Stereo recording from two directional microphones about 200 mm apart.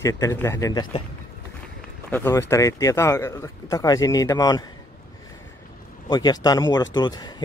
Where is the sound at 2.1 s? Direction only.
10° left (ahead or behind).